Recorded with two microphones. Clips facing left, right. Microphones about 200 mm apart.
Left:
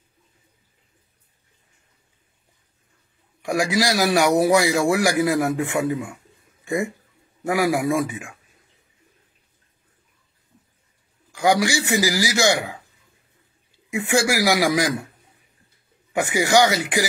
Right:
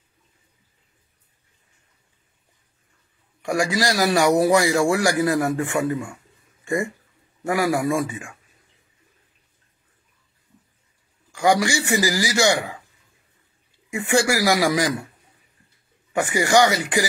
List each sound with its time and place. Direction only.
3.4 s a man's voice: 15° left (ahead or behind)
11.4 s a man's voice: 20° left (ahead or behind)
14.0 s a man's voice: 10° left (ahead or behind)
16.2 s a man's voice: 20° left (ahead or behind)